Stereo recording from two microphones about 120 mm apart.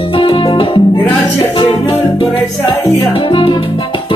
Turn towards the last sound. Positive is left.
turn(degrees=45)  # may be behind; listen again after turning